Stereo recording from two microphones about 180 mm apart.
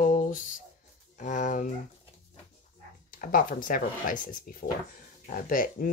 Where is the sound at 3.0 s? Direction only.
50° left (ahead or behind).